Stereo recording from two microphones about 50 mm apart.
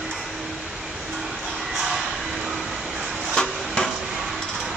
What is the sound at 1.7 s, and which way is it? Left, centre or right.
Vehicle, centre.